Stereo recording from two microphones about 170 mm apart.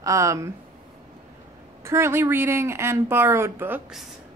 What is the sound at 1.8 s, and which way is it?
Speech, 15° right (ahead or behind).